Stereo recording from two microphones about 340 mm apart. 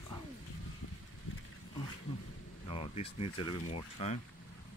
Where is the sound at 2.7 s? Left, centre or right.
Centre.